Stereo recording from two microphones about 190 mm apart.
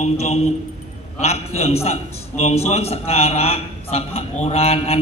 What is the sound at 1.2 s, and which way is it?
A man's voice, 35° left (ahead or behind).